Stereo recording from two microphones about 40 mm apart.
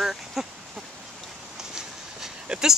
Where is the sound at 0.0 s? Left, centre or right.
Centre.